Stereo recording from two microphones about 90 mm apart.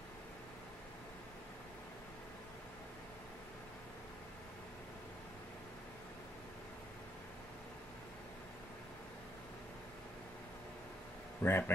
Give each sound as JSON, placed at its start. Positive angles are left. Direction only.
{"t": 11.4, "sound": "a man's voice", "side_deg": 25}